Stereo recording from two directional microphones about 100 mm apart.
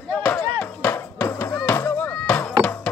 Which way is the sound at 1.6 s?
20° left (ahead or behind).